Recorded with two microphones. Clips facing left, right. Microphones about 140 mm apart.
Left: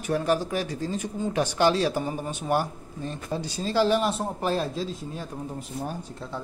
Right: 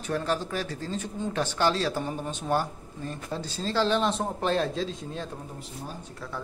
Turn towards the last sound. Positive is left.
turn(degrees=5)  # may be behind; listen again after turning